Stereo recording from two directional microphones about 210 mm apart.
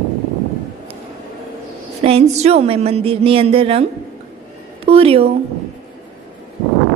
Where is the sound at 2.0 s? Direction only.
30° right (ahead or behind).